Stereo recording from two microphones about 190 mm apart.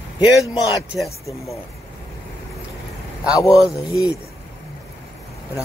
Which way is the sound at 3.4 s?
20° left (ahead or behind).